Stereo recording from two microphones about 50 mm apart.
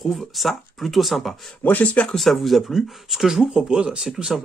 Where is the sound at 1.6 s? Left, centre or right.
Left.